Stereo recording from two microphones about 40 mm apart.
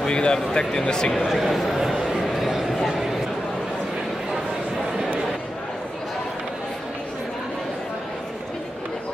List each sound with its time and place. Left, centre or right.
0.0 s speech: left
1.1 s speech: centre
1.8 s a sound: centre